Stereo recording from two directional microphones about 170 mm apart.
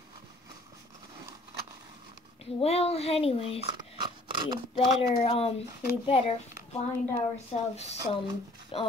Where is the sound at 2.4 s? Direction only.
35° left (ahead or behind).